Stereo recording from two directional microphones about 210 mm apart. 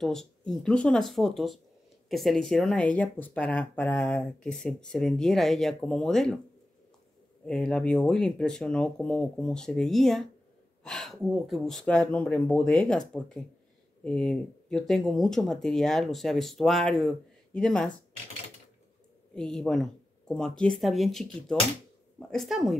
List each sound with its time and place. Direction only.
0.0 s speech: centre (ahead or behind)
7.4 s speech: 5° left (ahead or behind)
19.3 s speech: 5° left (ahead or behind)